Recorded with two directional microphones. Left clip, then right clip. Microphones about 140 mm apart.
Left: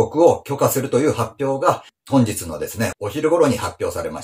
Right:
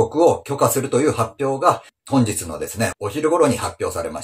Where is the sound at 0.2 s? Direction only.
25° right (ahead or behind).